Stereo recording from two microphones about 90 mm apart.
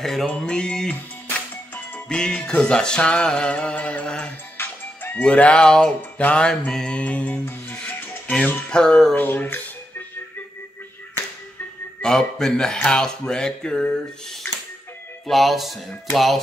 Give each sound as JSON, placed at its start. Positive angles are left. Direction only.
{"t": 0.0, "sound": "speech", "side_deg": 0}
{"t": 0.3, "sound": "music", "side_deg": 10}
{"t": 4.6, "sound": "music", "side_deg": 25}
{"t": 5.2, "sound": "music", "side_deg": 15}
{"t": 9.1, "sound": "a sound", "side_deg": 20}
{"t": 12.0, "sound": "speech", "side_deg": 5}
{"t": 12.7, "sound": "music", "side_deg": 10}
{"t": 15.2, "sound": "speech", "side_deg": 0}